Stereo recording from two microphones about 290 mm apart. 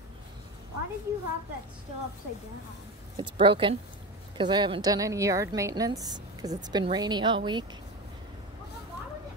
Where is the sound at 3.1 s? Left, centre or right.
Centre.